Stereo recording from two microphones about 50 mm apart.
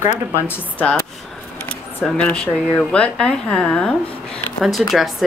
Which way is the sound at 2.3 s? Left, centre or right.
Centre.